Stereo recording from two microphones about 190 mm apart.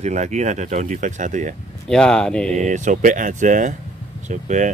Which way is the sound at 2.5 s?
40° right (ahead or behind).